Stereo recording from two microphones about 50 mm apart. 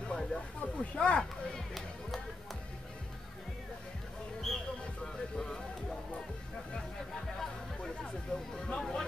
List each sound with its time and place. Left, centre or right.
0.1 s speech: centre
4.5 s music: centre
8.0 s a sound: centre